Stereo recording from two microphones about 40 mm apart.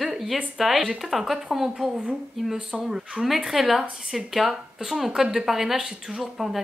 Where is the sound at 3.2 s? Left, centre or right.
Centre.